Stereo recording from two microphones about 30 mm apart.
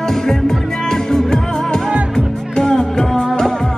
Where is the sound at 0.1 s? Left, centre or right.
Centre.